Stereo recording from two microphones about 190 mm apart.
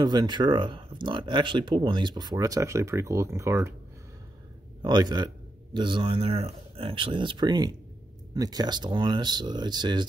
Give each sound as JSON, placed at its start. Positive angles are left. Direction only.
{"t": 0.0, "sound": "speech", "side_deg": -20}
{"t": 4.8, "sound": "speech", "side_deg": -20}